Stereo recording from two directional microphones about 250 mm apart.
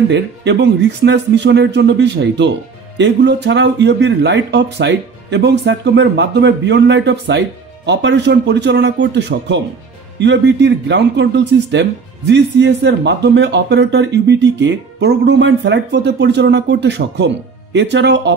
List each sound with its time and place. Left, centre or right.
0.1 s speech: right